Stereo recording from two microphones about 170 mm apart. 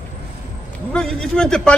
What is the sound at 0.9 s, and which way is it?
Speech, 5° left (ahead or behind).